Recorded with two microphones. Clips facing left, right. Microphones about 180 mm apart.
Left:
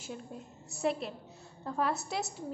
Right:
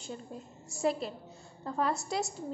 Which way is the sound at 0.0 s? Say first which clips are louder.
Right 1 dB; 5° left (ahead or behind).